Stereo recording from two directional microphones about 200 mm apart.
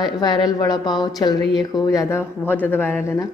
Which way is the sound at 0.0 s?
20° left (ahead or behind).